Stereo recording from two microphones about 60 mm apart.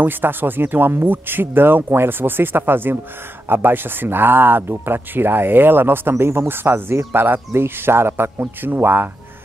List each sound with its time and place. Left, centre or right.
0.0 s speech: right